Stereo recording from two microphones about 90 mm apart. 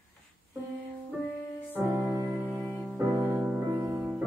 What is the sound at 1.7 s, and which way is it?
Music, 20° right (ahead or behind).